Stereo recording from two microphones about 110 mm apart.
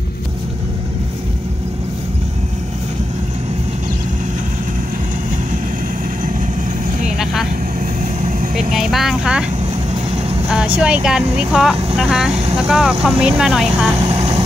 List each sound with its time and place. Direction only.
8.7 s speech: 5° right (ahead or behind)
10.8 s speech: 10° right (ahead or behind)
14.0 s vehicle: 75° right (ahead or behind)